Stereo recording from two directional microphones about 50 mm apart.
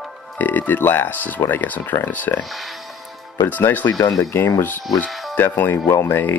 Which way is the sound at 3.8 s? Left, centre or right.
Left.